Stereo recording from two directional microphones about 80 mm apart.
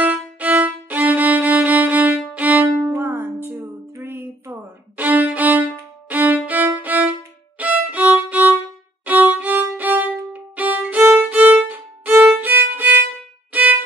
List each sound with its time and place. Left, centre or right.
0.0 s violin: right